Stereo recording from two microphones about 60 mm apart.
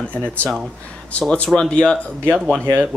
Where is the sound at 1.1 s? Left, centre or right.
Centre.